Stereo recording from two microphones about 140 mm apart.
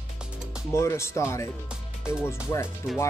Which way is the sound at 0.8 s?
20° left (ahead or behind).